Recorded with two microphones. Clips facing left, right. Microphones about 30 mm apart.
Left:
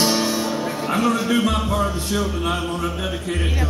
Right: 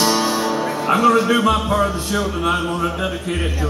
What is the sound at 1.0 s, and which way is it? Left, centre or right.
Speech, right.